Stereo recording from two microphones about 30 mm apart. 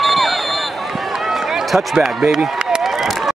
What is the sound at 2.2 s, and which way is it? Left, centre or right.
Speech, centre.